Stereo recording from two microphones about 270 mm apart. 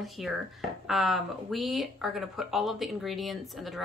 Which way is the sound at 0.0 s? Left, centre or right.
Centre.